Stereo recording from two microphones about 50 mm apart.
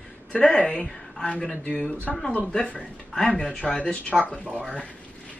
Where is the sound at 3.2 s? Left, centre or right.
Centre.